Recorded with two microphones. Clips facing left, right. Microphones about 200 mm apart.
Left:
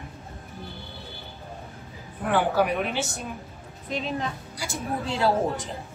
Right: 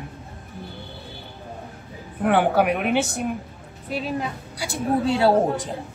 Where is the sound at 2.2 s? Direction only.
60° right (ahead or behind).